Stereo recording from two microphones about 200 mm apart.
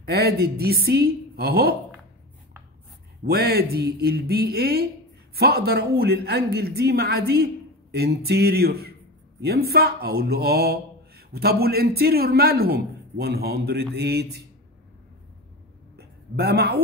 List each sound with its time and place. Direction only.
0.0 s speech: 50° right (ahead or behind)
3.3 s speech: 50° right (ahead or behind)
16.0 s a sound: 55° right (ahead or behind)